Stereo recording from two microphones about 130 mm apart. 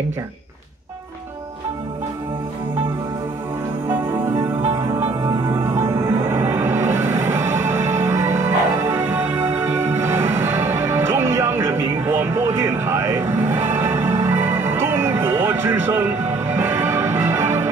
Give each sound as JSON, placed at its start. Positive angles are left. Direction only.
{"t": 3.9, "sound": "music", "side_deg": -15}